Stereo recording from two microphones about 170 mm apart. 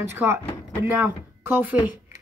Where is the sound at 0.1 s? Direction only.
15° right (ahead or behind).